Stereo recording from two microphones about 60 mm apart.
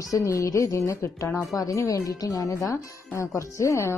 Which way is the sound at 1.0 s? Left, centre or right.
Left.